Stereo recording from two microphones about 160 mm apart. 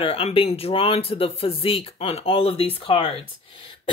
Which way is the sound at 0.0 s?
35° left (ahead or behind).